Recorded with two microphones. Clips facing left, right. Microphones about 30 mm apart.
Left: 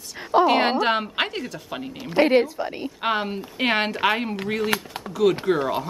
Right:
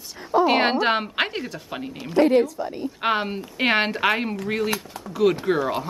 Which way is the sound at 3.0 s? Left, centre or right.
Centre.